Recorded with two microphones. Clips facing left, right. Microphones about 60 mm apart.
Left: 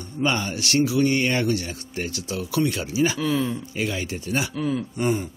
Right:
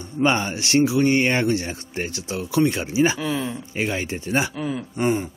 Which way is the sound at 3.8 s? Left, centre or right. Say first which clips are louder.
Right 4 dB; right.